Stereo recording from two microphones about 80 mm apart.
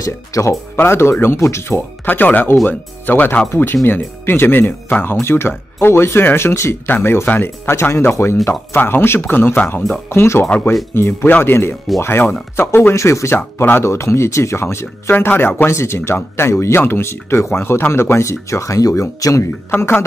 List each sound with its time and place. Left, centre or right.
0.0 s speech: left
0.7 s speech: left
19.7 s speech: left